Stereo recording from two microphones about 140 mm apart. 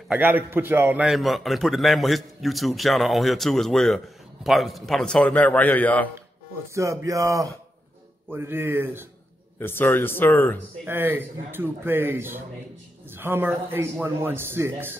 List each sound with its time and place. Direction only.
0.1 s a man's voice: 10° right (ahead or behind)
1.0 s a man's voice: centre (ahead or behind)
6.7 s a man's voice: 20° right (ahead or behind)
9.6 s speech: 15° left (ahead or behind)
10.9 s a man's voice: 15° right (ahead or behind)